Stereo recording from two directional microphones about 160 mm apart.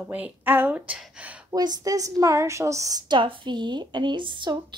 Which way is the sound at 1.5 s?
25° right (ahead or behind).